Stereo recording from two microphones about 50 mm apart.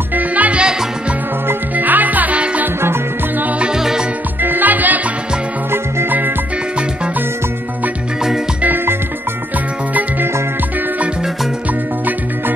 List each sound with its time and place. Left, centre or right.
0.1 s music: right
0.6 s music: centre
1.5 s music: right; by 3.8 s centre
4.4 s music: right
6.0 s music: right
8.6 s music: right